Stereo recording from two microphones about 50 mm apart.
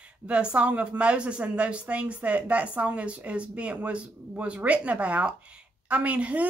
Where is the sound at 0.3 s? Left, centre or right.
Right.